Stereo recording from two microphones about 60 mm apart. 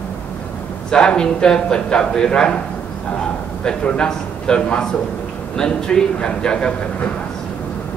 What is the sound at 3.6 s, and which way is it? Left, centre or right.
A man's voice, centre.